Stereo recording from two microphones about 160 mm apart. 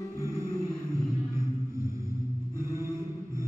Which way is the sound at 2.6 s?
20° right (ahead or behind).